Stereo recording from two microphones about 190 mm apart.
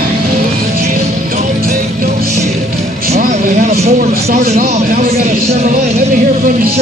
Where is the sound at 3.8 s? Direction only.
40° right (ahead or behind).